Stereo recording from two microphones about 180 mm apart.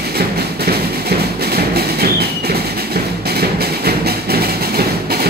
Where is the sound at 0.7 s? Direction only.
60° right (ahead or behind).